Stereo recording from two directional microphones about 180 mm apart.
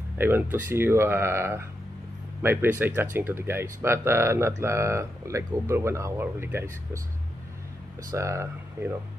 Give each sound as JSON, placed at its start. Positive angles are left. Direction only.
{"t": 0.2, "sound": "speech", "side_deg": -10}
{"t": 8.1, "sound": "speech", "side_deg": -15}